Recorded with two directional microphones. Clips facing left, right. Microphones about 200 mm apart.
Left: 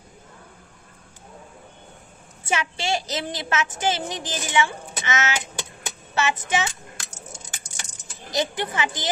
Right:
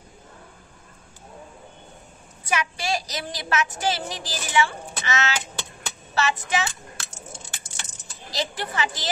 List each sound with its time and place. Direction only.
2.4 s a woman's voice: 25° left (ahead or behind)
5.9 s keys jangling: 20° left (ahead or behind)
8.3 s a woman's voice: 20° left (ahead or behind)